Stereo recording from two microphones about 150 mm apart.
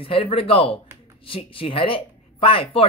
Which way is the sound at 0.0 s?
40° left (ahead or behind).